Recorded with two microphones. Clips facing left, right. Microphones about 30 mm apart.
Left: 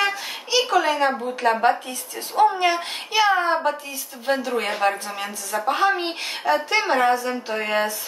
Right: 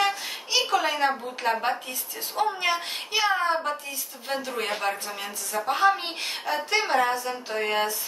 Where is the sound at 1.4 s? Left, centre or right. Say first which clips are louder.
Left 5 dB; centre.